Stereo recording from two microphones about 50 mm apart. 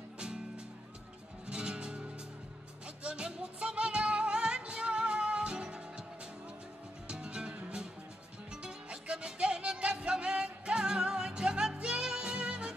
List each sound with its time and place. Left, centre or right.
1.5 s music: centre
7.1 s music: right